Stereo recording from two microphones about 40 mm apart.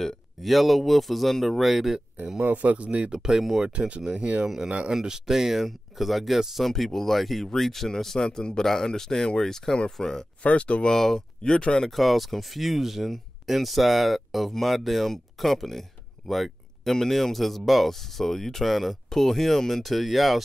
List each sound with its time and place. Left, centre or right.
0.4 s speech: centre
2.4 s speech: right
3.1 s speech: centre
3.7 s speech: right
4.9 s speech: centre
6.7 s speech: centre
10.4 s speech: left
11.0 s speech: centre
11.4 s speech: left
11.9 s speech: centre
16.3 s a sound: centre
16.9 s speech: centre